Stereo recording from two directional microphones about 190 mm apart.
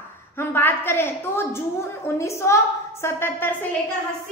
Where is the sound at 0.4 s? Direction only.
10° left (ahead or behind).